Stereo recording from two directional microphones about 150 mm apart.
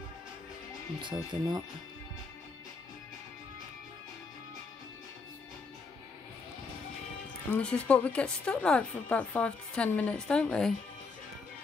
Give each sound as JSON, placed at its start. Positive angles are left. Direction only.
{"t": 1.0, "sound": "speech", "side_deg": -30}
{"t": 7.5, "sound": "speech", "side_deg": 10}